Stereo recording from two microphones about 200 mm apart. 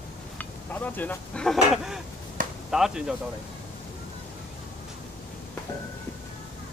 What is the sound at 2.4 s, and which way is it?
Chop, 40° right (ahead or behind).